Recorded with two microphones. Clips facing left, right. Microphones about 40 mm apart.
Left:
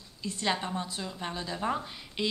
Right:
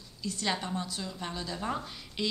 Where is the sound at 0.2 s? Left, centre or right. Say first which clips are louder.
Left 2 dB; left.